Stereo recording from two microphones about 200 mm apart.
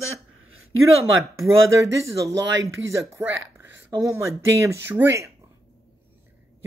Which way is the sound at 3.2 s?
70° right (ahead or behind).